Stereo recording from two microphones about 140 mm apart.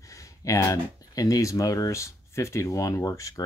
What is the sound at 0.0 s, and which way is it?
Speech, 20° left (ahead or behind).